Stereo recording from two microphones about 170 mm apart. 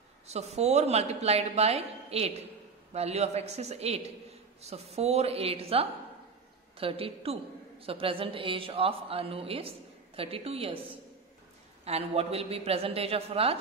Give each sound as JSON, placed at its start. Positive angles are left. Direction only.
{"t": 0.3, "sound": "a woman's voice", "side_deg": -40}
{"t": 11.8, "sound": "a woman's voice", "side_deg": -35}